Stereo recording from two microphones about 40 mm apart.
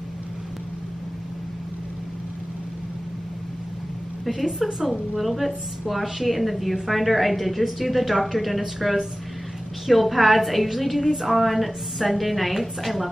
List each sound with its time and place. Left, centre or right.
4.3 s a woman's voice: centre